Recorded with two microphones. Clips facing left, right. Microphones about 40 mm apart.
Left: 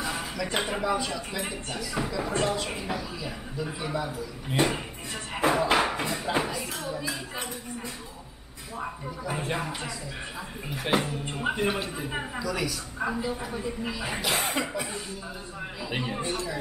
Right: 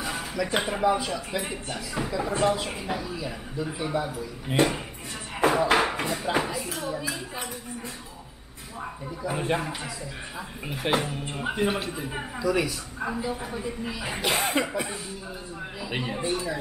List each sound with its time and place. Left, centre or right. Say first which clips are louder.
0.0 s a sound: right 2 dB; centre
0.8 s speech: right 4 dB; centre
4.6 s a woman's voice: right 2 dB; centre
5.4 s music: right 2 dB; centre
6.2 s a woman's voice: right 2 dB; centre
9.2 s speech: right 4 dB; centre
10.7 s a woman's voice: right 1 dB; centre
12.4 s speech: right 7 dB; centre
13.0 s a woman's voice: even; centre
16.3 s speech: right 3 dB; centre